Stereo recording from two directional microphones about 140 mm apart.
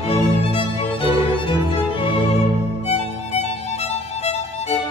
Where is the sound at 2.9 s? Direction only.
50° left (ahead or behind).